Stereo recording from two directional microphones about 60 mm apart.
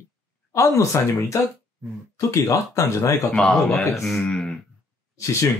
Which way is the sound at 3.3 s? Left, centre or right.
Centre.